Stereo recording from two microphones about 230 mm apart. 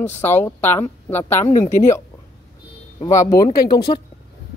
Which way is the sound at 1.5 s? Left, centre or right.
Left.